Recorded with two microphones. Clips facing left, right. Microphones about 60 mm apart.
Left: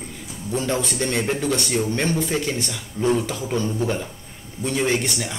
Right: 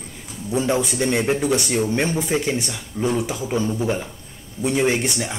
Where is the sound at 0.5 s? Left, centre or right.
Centre.